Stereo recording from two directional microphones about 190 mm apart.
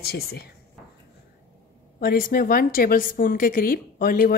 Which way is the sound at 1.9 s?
50° left (ahead or behind).